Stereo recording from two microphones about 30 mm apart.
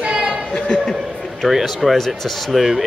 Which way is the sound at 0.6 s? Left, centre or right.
Left.